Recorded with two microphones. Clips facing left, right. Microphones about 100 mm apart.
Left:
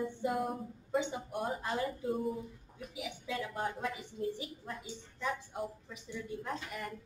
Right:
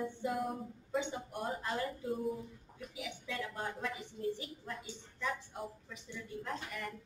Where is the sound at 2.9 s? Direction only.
15° left (ahead or behind).